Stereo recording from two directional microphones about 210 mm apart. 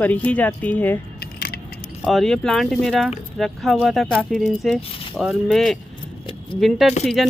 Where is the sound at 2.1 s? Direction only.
Centre (ahead or behind).